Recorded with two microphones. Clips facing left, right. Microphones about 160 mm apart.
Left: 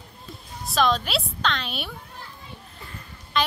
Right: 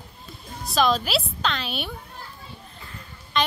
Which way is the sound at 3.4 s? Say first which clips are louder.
Even; centre (ahead or behind).